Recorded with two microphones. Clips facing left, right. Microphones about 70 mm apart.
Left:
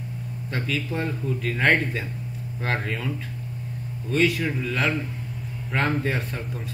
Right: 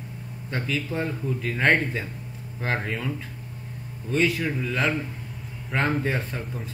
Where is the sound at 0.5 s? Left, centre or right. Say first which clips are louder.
Even; centre.